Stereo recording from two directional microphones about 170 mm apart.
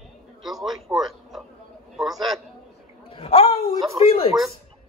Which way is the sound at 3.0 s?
35° left (ahead or behind).